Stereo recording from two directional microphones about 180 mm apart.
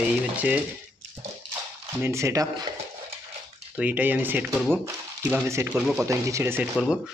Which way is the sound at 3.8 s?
10° right (ahead or behind).